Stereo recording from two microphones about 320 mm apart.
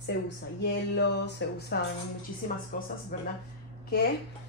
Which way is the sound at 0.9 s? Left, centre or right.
Left.